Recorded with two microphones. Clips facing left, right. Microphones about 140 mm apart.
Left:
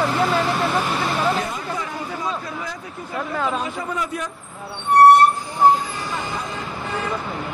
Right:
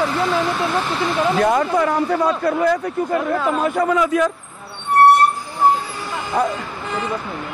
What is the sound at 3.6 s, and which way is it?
Speech, 80° right.